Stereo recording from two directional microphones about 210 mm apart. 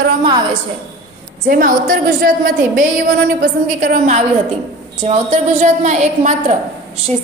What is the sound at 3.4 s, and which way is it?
A woman's voice, 40° right (ahead or behind).